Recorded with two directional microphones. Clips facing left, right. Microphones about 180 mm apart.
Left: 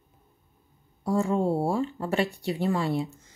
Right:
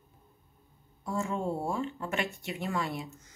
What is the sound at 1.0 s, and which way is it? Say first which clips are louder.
Speech: left 8 dB; 35° left (ahead or behind).